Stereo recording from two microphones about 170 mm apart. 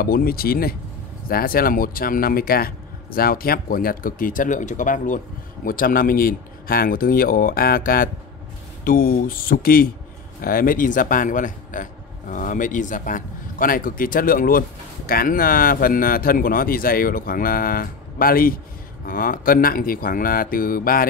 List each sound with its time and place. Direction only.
0.0 s speech: 60° left (ahead or behind)